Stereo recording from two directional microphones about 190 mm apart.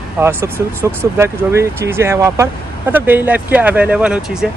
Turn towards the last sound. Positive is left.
turn(degrees=-5)  # may be behind; listen again after turning